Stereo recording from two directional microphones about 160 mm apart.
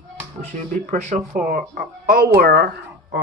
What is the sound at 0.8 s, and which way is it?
Speech, 50° right (ahead or behind).